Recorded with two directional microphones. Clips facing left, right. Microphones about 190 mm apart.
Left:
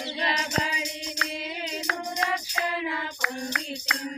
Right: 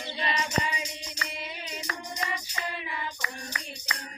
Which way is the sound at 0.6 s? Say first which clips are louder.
Left 3 dB; 90° left.